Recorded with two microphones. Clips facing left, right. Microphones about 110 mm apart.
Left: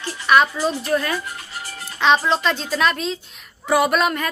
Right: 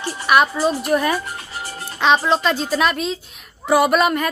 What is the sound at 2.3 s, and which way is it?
A woman's voice, 5° right (ahead or behind).